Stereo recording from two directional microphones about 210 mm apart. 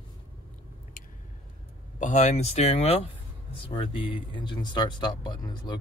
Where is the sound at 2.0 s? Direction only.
35° left (ahead or behind).